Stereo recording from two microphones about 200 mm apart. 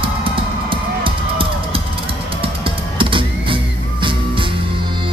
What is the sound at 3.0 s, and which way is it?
Music, 25° right (ahead or behind).